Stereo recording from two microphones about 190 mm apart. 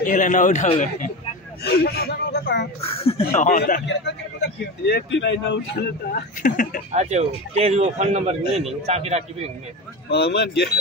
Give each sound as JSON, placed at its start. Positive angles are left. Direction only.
{"t": 0.0, "sound": "a man's voice", "side_deg": 45}
{"t": 1.6, "sound": "a man's voice", "side_deg": 55}
{"t": 3.0, "sound": "a man's voice", "side_deg": 30}
{"t": 3.4, "sound": "speech", "side_deg": 45}
{"t": 3.8, "sound": "a man's voice", "side_deg": 65}
{"t": 6.4, "sound": "speech", "side_deg": 45}
{"t": 6.9, "sound": "speech", "side_deg": -35}
{"t": 10.0, "sound": "a man's voice", "side_deg": 60}